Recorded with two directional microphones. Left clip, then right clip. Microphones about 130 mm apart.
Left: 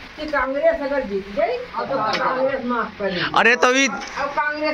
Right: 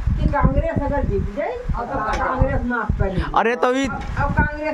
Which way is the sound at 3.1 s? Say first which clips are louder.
Left 4 dB; 25° right (ahead or behind).